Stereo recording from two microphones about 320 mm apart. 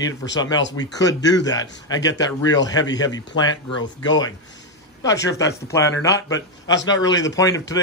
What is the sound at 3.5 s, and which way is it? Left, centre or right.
Speech, left.